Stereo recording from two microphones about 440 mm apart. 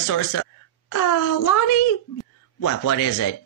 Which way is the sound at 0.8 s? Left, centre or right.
Left.